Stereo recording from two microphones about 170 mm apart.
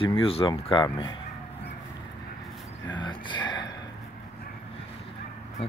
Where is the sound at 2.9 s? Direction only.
25° left (ahead or behind).